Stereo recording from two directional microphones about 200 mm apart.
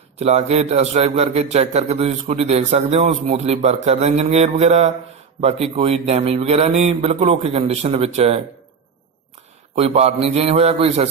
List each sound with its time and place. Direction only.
0.2 s a man's voice: 30° right (ahead or behind)
9.8 s a man's voice: 30° right (ahead or behind)